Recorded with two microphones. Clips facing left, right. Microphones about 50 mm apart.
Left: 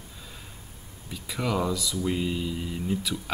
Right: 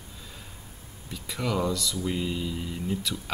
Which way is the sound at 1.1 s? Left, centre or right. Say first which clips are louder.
Left 1 dB; centre.